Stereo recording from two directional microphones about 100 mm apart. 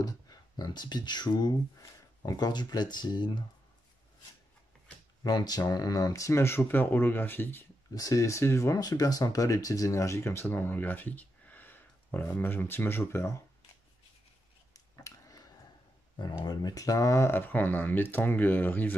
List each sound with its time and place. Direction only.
0.0 s speech: 40° left (ahead or behind)
5.2 s speech: 45° left (ahead or behind); by 7.6 s 20° left (ahead or behind)
7.9 s speech: 35° left (ahead or behind)
8.7 s speech: 40° left (ahead or behind)
14.7 s a sound: 35° left (ahead or behind)
16.4 s speech: 40° left (ahead or behind); by 18.9 s 20° left (ahead or behind)